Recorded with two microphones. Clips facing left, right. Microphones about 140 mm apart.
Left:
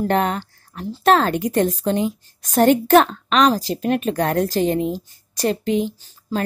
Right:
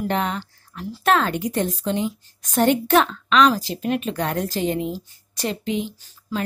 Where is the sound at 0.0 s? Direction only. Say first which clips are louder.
Left 4 dB; 45° left (ahead or behind).